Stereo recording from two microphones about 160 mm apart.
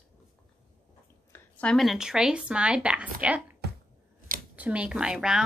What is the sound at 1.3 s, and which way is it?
A woman's voice, 5° left (ahead or behind).